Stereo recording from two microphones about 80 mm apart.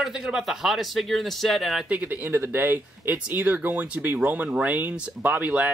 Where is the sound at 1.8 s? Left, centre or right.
Centre.